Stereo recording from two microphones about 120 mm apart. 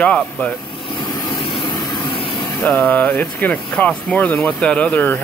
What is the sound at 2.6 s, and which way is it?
Speech, 15° left (ahead or behind).